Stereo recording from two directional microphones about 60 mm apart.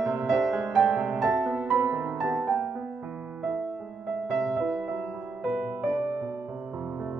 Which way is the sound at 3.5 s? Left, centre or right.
Centre.